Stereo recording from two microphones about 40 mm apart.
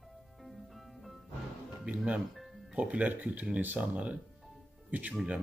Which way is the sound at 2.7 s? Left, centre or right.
Right.